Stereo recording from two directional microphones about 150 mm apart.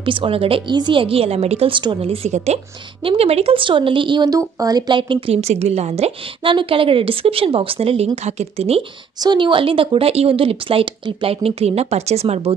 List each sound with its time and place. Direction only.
0.0 s speech: 35° right (ahead or behind)
9.2 s speech: 30° right (ahead or behind)